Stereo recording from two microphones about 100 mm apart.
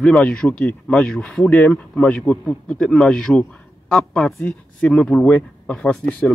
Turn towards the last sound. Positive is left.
turn(degrees=10)  # may be behind; listen again after turning